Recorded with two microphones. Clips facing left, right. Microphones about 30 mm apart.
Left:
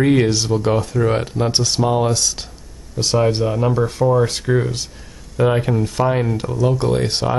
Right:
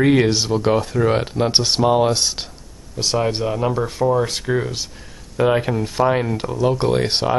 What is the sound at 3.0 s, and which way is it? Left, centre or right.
Speech, centre.